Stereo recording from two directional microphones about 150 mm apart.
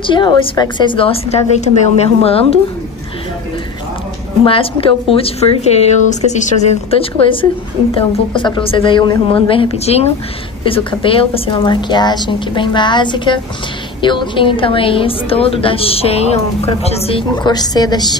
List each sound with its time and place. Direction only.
0.0 s a woman's voice: 30° left (ahead or behind)
4.5 s a woman's voice: 40° left (ahead or behind)
8.4 s a woman's voice: 35° left (ahead or behind)